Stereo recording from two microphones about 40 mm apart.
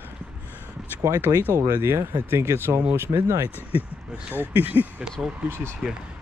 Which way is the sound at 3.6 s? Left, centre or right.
Right.